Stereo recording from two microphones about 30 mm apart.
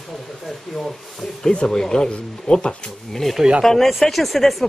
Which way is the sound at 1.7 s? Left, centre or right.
Left.